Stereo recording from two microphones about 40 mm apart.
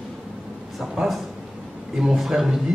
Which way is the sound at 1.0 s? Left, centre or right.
Centre.